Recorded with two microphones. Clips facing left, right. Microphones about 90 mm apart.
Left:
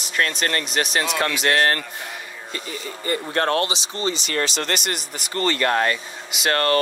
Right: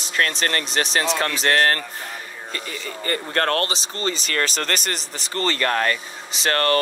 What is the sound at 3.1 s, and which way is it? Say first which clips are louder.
Speech: left 1 dB; 50° right (ahead or behind).